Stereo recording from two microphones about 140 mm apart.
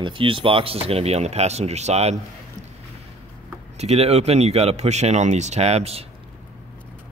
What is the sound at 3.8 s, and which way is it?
Speech, 50° right (ahead or behind).